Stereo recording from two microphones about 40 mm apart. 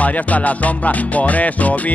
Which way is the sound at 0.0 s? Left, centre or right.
Left.